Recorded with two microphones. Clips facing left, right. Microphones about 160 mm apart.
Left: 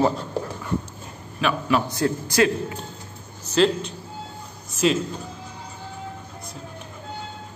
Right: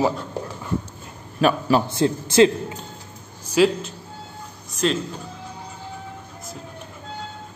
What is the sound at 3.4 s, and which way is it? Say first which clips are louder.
Speech: right 2 dB; 10° right (ahead or behind).